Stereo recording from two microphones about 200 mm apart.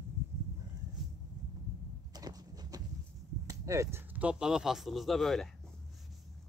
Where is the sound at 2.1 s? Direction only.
20° right (ahead or behind).